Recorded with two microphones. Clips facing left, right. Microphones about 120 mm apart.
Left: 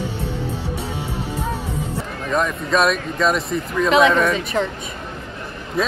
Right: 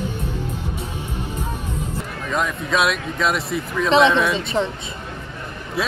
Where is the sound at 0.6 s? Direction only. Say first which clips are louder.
Left 3 dB; 75° left (ahead or behind).